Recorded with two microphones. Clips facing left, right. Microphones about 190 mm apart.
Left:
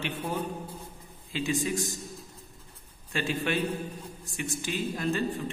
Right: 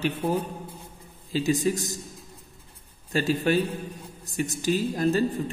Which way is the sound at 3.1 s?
40° right (ahead or behind).